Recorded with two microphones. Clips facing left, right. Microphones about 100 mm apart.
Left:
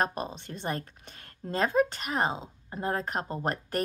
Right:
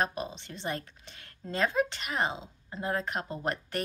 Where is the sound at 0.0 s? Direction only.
45° left (ahead or behind).